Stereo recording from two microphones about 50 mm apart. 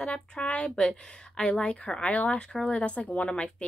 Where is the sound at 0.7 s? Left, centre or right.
Centre.